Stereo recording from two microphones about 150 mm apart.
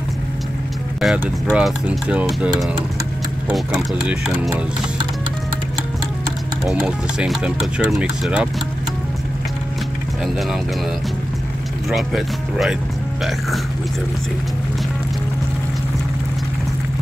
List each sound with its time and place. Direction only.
1.0 s speech: 5° right (ahead or behind)
6.6 s speech: 5° right (ahead or behind)
11.9 s speech: centre (ahead or behind)